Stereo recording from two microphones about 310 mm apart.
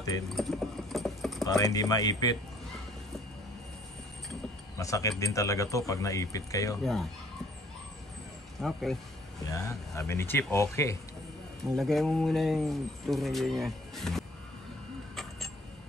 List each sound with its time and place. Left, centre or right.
0.4 s clip-clop: centre
1.4 s speech: centre
4.7 s speech: centre
8.5 s speech: centre